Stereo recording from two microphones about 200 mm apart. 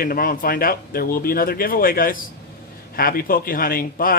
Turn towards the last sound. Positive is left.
turn(degrees=45)  # may be behind; listen again after turning